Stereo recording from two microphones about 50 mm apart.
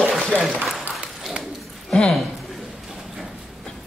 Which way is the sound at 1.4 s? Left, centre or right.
Centre.